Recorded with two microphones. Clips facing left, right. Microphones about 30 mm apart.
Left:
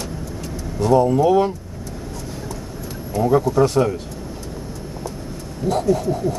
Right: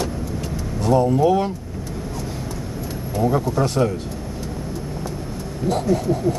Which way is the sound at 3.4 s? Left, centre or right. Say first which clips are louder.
Left 3 dB; centre.